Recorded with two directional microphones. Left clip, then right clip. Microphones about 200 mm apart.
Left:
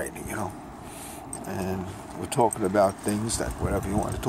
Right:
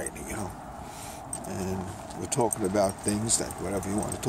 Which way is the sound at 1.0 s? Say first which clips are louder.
Left 2 dB; 5° left (ahead or behind).